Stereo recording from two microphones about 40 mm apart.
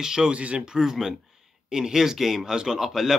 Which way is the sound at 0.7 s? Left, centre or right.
Centre.